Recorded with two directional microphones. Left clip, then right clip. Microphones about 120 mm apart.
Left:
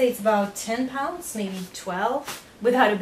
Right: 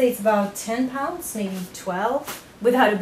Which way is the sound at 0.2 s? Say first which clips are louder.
Right 1 dB; 10° right (ahead or behind).